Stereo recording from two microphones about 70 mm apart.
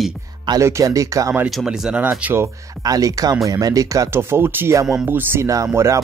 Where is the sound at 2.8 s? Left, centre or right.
Right.